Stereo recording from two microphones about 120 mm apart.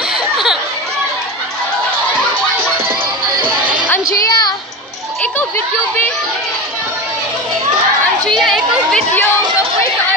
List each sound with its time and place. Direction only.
4.0 s music: 30° left (ahead or behind)
8.3 s chatter: centre (ahead or behind)